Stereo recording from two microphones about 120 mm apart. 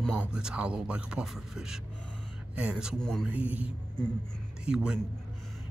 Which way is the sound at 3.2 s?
10° right (ahead or behind).